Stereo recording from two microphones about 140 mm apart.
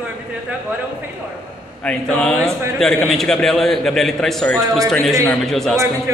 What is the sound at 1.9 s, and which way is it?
A man's voice, 5° left (ahead or behind).